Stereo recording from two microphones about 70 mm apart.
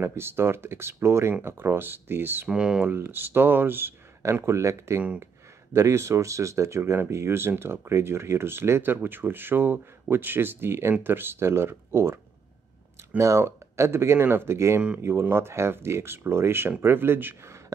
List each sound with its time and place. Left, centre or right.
0.0 s speech: right
2.4 s speech: centre
2.9 s speech: right
4.2 s speech: right
13.2 s speech: right